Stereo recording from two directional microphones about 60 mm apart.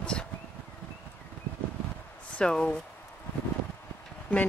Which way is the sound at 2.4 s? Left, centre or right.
Centre.